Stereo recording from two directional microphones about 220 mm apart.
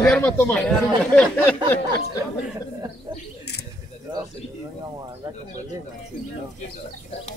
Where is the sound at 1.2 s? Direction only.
5° left (ahead or behind).